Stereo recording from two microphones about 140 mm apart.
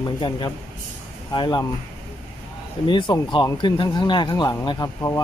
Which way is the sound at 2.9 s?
35° left (ahead or behind).